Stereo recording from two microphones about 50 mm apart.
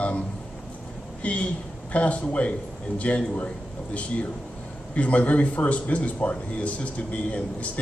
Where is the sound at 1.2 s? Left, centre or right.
Left.